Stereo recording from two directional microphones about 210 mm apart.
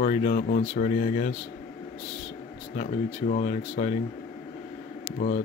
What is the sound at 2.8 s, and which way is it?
Speech, 35° left (ahead or behind).